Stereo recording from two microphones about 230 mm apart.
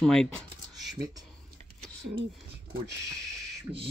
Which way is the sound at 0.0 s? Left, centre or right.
Centre.